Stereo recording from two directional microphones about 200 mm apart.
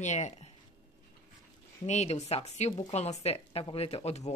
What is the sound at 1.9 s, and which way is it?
A woman's voice, 35° left (ahead or behind).